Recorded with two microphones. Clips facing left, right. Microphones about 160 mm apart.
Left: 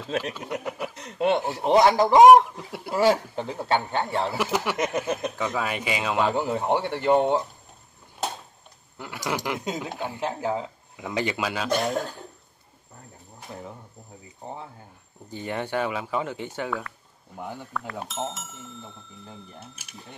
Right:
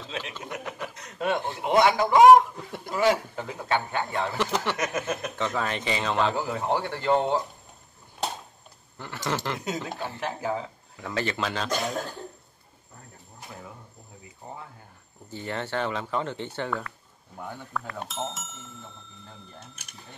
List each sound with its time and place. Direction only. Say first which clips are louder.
0.5 s speech: left 4 dB; 10° left (ahead or behind)
1.6 s a man's voice: left 3 dB; 35° left (ahead or behind)
2.5 s speech: left 3 dB; 5° left (ahead or behind)
3.0 s a man's voice: left 2 dB; 30° left (ahead or behind)
4.3 s speech: left 1 dB; 10° left (ahead or behind)
4.7 s speech: left 3 dB; 20° left (ahead or behind)
6.3 s speech: left 3 dB; 20° left (ahead or behind)
8.9 s speech: left 1 dB; 10° left (ahead or behind)
14.4 s speech: left 4 dB; 25° left (ahead or behind)
15.2 s speech: left 2 dB; 15° left (ahead or behind)